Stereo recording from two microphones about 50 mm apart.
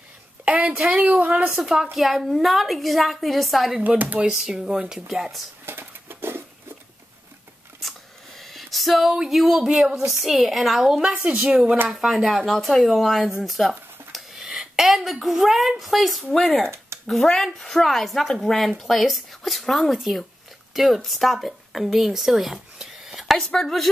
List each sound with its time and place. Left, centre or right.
0.5 s speech: right
1.5 s a woman's voice: centre
4.0 s speech: right
4.3 s speech: centre
5.7 s a sound: right
8.4 s a sound: centre
9.1 s a woman's voice: centre
11.2 s speech: right
11.9 s a woman's voice: centre
23.3 s speech: centre